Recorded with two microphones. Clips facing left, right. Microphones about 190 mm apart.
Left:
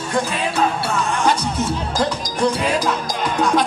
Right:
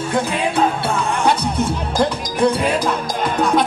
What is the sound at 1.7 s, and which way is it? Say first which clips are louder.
Music: right 2 dB; 60° right (ahead or behind).